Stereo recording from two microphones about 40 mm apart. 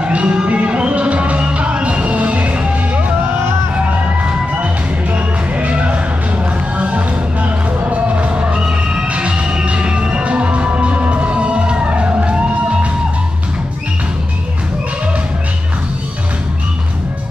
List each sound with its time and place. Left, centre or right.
0.0 s music: right
5.1 s music: right